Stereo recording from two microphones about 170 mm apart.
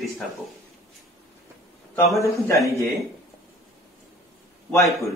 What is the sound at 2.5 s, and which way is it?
Speech, 20° left (ahead or behind).